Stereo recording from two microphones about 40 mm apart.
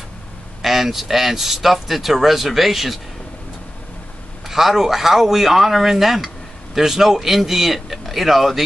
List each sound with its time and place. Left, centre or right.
0.6 s speech: centre
4.5 s speech: centre